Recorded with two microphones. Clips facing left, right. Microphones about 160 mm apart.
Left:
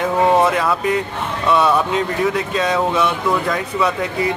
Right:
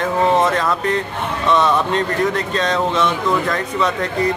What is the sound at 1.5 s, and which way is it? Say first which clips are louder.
Speech: left 1 dB; 5° left (ahead or behind).